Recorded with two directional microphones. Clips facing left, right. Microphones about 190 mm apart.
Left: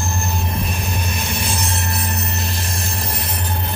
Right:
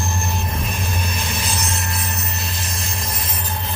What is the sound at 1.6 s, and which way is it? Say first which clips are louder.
Music: left 2 dB; 30° left (ahead or behind).